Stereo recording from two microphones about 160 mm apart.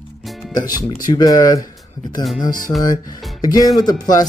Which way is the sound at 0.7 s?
25° left (ahead or behind).